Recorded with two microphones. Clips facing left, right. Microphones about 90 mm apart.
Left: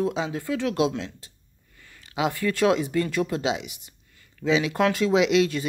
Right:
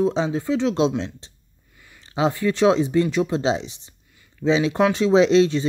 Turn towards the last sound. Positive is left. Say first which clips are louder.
# right 5 dB
turn(degrees=-30)  # may be behind; listen again after turning